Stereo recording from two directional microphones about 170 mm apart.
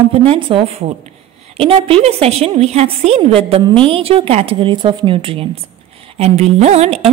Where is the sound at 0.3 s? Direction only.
30° right (ahead or behind).